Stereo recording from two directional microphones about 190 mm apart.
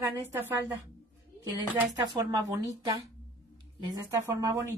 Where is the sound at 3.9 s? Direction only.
15° right (ahead or behind).